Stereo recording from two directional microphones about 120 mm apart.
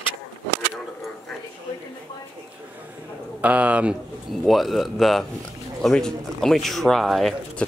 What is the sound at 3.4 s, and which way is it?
Speech, 10° right (ahead or behind).